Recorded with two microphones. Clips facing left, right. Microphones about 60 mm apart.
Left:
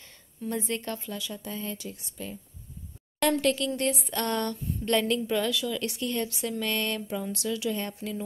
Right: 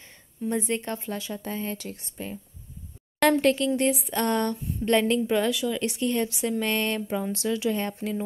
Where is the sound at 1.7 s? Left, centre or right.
Right.